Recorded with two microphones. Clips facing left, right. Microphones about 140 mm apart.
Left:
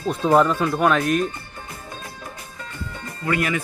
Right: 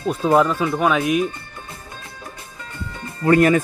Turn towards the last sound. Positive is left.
turn(degrees=-40)  # may be behind; listen again after turning